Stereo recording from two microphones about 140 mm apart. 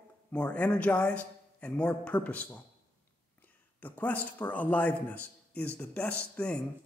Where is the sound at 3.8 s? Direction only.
10° left (ahead or behind).